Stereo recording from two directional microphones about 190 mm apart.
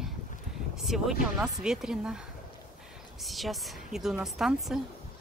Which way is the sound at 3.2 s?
Centre (ahead or behind).